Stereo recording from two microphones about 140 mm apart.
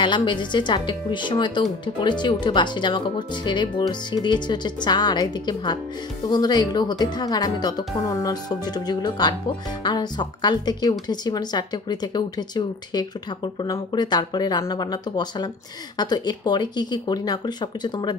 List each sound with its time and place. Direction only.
0.0 s a woman's voice: 35° left (ahead or behind)